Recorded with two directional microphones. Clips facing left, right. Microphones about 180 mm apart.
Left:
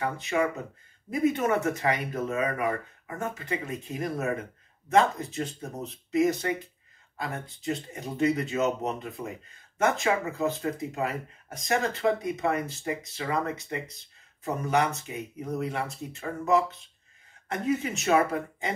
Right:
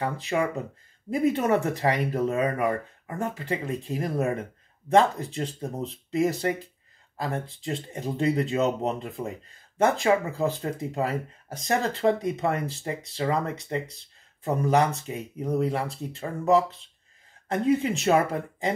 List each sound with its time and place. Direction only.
0.0 s speech: 35° right (ahead or behind)